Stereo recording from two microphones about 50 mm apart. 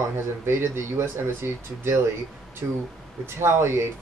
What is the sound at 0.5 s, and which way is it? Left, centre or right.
Speech, right.